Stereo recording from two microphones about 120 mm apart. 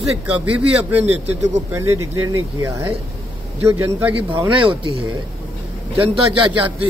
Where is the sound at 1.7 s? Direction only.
25° right (ahead or behind).